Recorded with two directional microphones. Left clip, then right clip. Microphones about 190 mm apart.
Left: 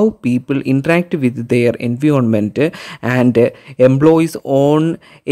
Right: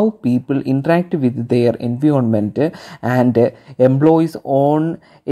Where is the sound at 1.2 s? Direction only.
45° left (ahead or behind).